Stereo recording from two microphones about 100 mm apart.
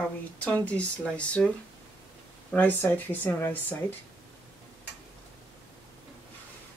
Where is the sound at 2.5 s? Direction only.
15° left (ahead or behind).